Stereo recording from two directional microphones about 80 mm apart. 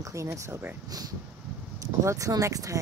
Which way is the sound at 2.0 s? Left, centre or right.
Right.